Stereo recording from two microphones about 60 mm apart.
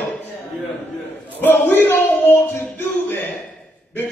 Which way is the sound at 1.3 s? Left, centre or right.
Left.